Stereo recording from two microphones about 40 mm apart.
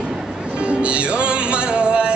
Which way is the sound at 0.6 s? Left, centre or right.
Right.